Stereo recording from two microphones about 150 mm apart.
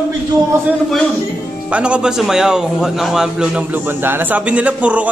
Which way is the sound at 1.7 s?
10° right (ahead or behind).